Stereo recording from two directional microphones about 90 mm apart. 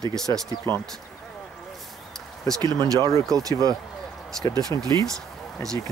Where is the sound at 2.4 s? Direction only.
50° right (ahead or behind).